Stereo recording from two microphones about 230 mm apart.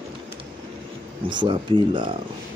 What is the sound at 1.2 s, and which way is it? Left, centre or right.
Speech, right.